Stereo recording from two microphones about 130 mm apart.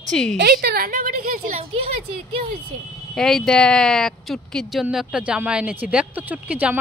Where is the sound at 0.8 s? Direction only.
90° right.